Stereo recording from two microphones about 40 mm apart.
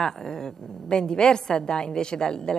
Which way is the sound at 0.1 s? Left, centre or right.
Centre.